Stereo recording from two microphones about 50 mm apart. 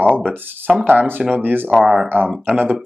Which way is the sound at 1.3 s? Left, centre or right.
Right.